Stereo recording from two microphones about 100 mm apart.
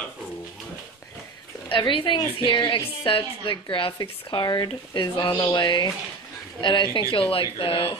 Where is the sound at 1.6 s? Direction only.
55° left (ahead or behind).